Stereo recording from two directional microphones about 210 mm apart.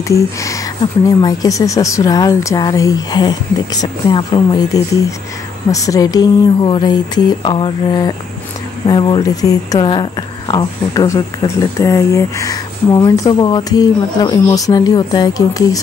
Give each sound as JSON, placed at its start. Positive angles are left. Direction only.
{"t": 0.1, "sound": "speech", "side_deg": 15}